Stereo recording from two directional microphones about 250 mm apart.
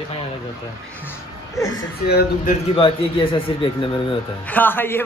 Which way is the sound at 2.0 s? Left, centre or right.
Left.